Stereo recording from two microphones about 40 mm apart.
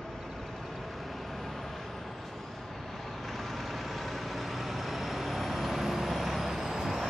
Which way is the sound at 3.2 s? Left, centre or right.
Centre.